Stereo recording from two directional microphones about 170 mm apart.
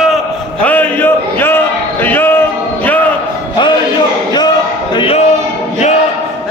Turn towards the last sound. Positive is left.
turn(degrees=35)  # may be behind; listen again after turning